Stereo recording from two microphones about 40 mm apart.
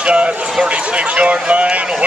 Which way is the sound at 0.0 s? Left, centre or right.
Right.